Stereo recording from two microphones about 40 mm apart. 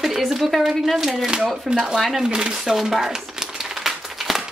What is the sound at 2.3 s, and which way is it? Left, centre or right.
Speech, centre.